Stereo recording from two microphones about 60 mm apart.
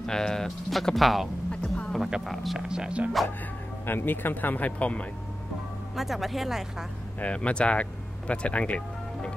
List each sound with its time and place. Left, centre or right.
0.0 s speech: centre
1.5 s a sound: centre
2.2 s speech: centre
2.7 s speech: centre
3.8 s speech: left
5.9 s speech: centre
7.2 s speech: left